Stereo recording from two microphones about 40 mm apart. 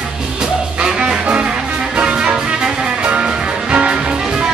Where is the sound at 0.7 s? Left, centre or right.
Centre.